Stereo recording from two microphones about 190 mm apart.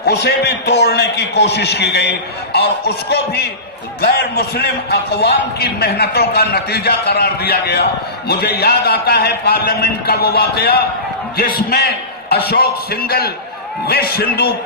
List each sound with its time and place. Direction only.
0.0 s a man's voice: 60° left (ahead or behind)